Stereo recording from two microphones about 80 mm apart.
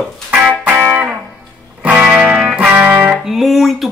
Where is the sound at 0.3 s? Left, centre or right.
Centre.